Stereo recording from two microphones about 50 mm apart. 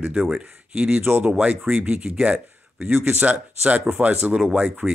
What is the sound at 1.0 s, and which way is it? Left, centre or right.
Speech, right.